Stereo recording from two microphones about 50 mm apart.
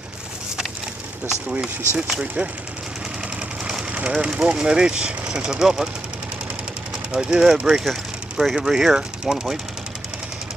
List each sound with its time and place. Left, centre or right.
2.0 s speech: centre
3.6 s a sound: right
4.1 s speech: centre
7.1 s speech: centre
7.8 s a sound: centre
8.5 s speech: centre